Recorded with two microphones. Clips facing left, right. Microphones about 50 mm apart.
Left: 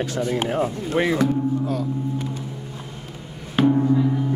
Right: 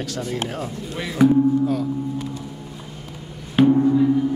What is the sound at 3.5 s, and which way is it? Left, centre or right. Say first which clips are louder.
Gong: right 2 dB; centre.